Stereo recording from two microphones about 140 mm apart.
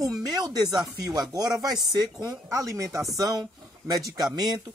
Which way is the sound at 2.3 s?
25° right (ahead or behind).